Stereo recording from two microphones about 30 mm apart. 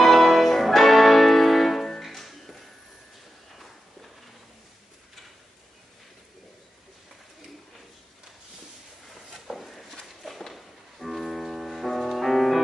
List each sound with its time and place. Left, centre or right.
0.0 s music: centre
3.5 s walk: centre
9.3 s a sound: centre
10.2 s music: centre